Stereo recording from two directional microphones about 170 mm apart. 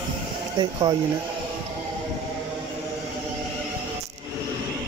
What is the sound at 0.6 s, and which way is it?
Speech, 25° right (ahead or behind).